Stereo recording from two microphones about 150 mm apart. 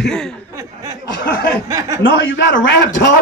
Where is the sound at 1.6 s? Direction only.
20° right (ahead or behind).